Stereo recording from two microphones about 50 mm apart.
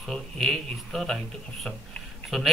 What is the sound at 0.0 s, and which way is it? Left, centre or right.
A man's voice, centre.